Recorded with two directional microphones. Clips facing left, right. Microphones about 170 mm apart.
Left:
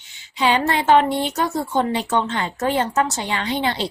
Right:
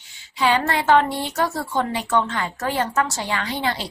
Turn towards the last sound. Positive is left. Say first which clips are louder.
# left 3 dB
turn(degrees=25)  # may be behind; listen again after turning